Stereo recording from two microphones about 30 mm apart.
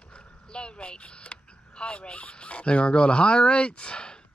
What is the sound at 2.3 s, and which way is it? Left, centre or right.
Speech, left.